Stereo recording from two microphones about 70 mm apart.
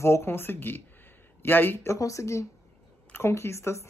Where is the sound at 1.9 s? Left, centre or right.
Left.